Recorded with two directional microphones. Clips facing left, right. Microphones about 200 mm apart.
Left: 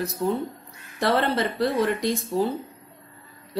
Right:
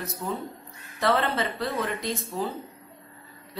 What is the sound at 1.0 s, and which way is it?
A woman's voice, 35° left (ahead or behind).